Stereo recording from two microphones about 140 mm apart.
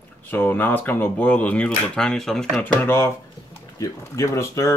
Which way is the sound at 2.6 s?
15° left (ahead or behind).